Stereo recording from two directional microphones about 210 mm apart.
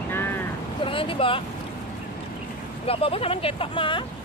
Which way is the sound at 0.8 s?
25° left (ahead or behind).